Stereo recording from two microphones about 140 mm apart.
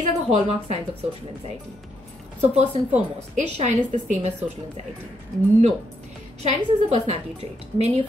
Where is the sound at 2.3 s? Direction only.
50° right (ahead or behind).